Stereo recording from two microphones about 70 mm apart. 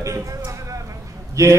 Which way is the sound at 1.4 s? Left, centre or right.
Right.